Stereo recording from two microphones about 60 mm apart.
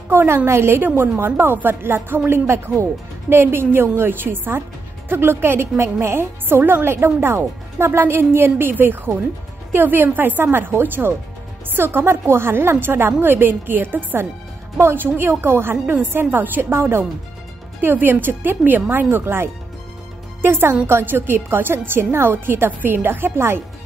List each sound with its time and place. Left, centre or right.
0.1 s a woman's voice: right